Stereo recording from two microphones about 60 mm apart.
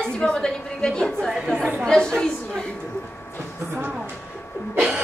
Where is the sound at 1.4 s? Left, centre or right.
Centre.